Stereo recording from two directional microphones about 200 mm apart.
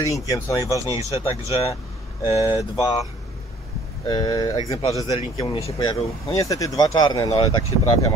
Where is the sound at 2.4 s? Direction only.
20° left (ahead or behind).